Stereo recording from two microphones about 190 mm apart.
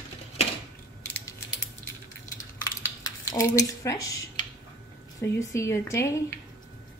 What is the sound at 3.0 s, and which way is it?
Speech, 15° left (ahead or behind).